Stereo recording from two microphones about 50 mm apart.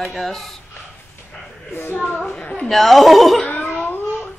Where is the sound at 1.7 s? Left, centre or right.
Left.